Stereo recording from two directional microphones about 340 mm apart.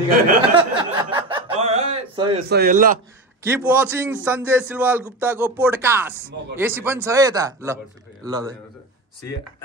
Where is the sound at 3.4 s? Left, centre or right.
Centre.